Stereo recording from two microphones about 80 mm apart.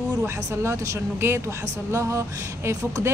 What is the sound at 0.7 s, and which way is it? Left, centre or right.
A woman's voice, right.